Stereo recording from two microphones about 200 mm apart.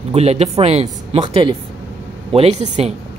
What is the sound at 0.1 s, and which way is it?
Speech, 30° right (ahead or behind).